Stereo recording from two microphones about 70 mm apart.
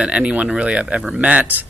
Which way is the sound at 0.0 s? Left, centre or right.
Centre.